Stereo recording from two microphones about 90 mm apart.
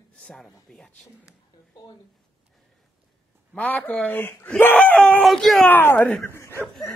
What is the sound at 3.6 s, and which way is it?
Speech, 15° left (ahead or behind).